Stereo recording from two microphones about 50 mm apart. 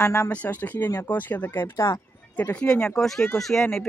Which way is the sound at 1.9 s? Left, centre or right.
Left.